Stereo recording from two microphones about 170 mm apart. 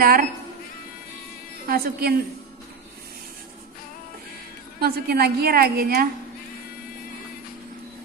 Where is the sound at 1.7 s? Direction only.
65° right (ahead or behind).